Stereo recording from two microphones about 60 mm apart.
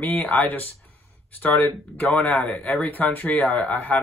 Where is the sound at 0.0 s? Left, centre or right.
Left.